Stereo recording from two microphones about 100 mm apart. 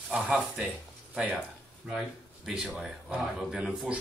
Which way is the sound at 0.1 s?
10° right (ahead or behind).